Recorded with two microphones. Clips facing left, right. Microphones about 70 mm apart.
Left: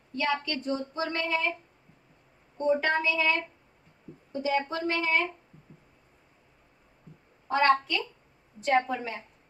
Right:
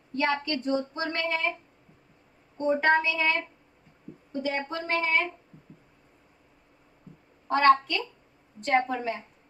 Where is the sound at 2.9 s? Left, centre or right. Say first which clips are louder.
Right 2 dB; centre.